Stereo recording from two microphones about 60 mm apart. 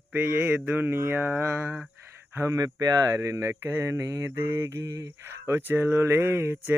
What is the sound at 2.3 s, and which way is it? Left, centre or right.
Speech, right.